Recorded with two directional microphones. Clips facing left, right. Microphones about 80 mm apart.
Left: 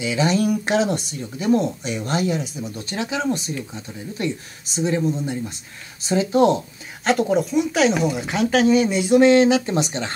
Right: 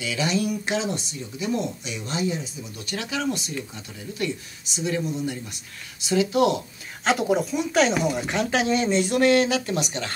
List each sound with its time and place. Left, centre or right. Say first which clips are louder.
0.0 s speech: left 6 dB; left
0.3 s speech: left 4 dB; left
2.9 s speech: left 3 dB; left
7.1 s speech: left 3 dB; centre; by 10.1 s left